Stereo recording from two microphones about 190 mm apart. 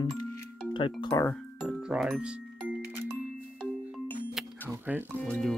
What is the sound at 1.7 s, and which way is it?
Music, centre (ahead or behind).